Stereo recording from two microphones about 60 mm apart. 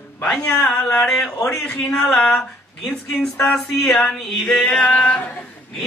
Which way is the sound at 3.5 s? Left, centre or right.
Centre.